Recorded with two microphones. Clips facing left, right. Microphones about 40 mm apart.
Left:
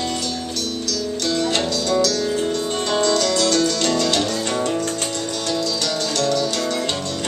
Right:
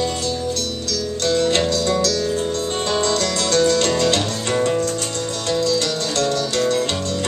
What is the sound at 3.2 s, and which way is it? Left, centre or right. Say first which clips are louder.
Music: even; right.